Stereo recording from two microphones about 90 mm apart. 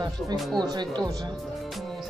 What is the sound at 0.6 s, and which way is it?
Speech, 50° right (ahead or behind).